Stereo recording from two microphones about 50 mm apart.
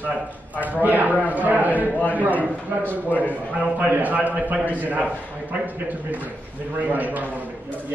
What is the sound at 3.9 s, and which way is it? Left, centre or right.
A man's voice, right.